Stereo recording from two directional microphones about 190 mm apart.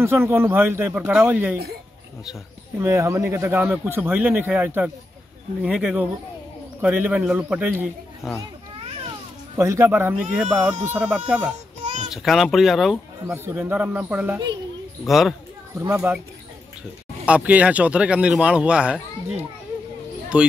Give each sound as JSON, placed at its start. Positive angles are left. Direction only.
{"t": 0.0, "sound": "speech", "side_deg": -15}
{"t": 2.8, "sound": "speech", "side_deg": -15}
{"t": 9.6, "sound": "speech", "side_deg": -15}
{"t": 11.8, "sound": "a sound", "side_deg": -40}
{"t": 12.1, "sound": "speech", "side_deg": 0}
{"t": 13.3, "sound": "speech", "side_deg": -10}
{"t": 15.7, "sound": "speech", "side_deg": -15}
{"t": 17.3, "sound": "speech", "side_deg": -10}
{"t": 20.3, "sound": "speech", "side_deg": -5}